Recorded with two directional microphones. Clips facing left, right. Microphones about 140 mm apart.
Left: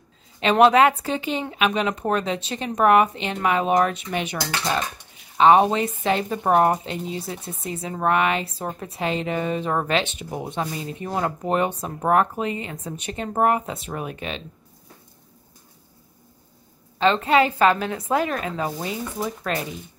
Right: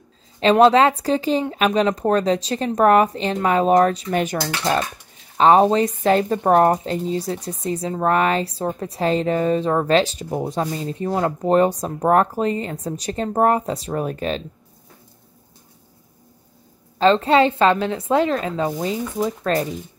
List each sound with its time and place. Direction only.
0.4 s speech: 30° right (ahead or behind)
17.0 s speech: 30° right (ahead or behind)